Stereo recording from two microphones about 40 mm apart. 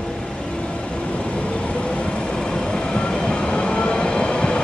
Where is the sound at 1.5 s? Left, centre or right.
Left.